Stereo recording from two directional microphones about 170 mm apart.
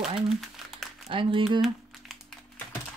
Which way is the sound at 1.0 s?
30° right (ahead or behind).